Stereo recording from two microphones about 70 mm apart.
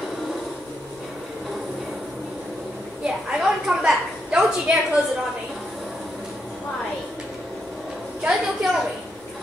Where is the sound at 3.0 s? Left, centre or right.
Centre.